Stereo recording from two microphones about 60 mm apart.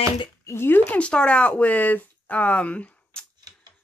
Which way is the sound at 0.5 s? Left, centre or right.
Left.